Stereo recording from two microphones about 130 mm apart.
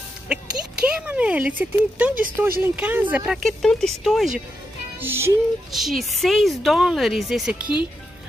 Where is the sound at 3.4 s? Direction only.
5° left (ahead or behind).